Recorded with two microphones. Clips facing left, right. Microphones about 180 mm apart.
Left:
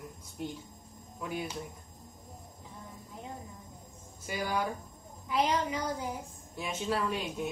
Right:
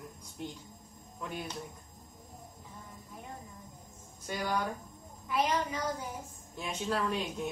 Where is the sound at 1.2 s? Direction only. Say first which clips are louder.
Left 3 dB; 5° left (ahead or behind).